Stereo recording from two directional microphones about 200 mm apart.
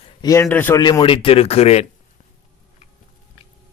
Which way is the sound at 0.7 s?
20° left (ahead or behind).